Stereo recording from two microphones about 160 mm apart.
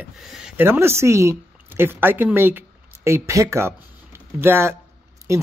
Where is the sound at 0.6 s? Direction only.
15° right (ahead or behind).